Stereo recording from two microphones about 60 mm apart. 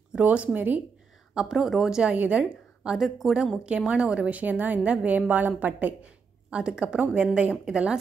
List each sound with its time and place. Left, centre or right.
0.2 s a woman's voice: right
1.3 s a woman's voice: centre
2.1 s a woman's voice: right; by 3.5 s centre
3.6 s a woman's voice: centre